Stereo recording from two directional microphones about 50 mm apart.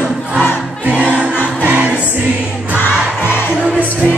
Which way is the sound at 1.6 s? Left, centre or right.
Right.